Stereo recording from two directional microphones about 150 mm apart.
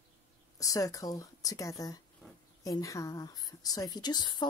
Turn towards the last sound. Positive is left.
turn(degrees=30)  # may be behind; listen again after turning